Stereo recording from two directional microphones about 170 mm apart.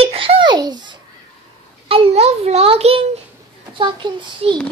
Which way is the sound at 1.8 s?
35° right (ahead or behind).